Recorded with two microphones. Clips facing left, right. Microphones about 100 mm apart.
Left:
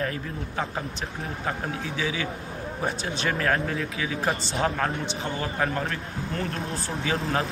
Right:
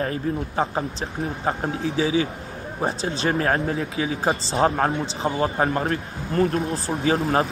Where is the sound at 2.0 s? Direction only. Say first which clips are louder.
Right 9 dB; 30° right (ahead or behind).